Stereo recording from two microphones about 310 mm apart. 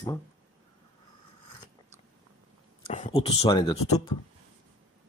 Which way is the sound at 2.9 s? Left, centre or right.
Left.